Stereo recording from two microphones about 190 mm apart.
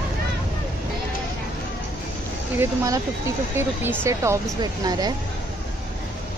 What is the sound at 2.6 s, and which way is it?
Speech, 15° right (ahead or behind).